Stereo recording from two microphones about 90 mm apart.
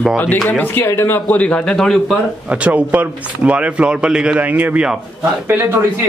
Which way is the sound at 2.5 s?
15° right (ahead or behind).